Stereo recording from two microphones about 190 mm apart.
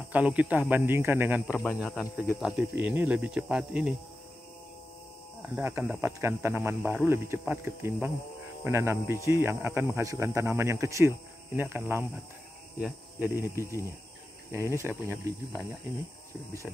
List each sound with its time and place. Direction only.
0.1 s speech: 5° right (ahead or behind)
1.6 s speech: 5° left (ahead or behind)
5.6 s speech: 15° right (ahead or behind)
13.6 s speech: 15° left (ahead or behind)
14.5 s speech: 15° right (ahead or behind)